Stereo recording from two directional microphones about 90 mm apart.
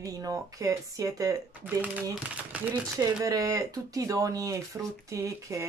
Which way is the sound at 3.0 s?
40° right (ahead or behind).